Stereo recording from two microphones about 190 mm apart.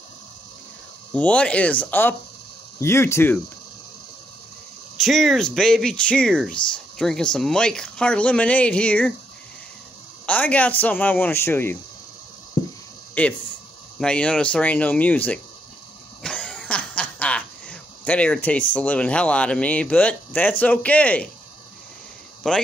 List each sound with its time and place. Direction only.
1.1 s speech: 5° left (ahead or behind)
5.0 s speech: centre (ahead or behind)
10.2 s speech: 5° left (ahead or behind)
13.2 s speech: 10° left (ahead or behind)
16.2 s cough: 5° left (ahead or behind)
18.7 s speech: 5° left (ahead or behind)
22.4 s speech: 5° left (ahead or behind)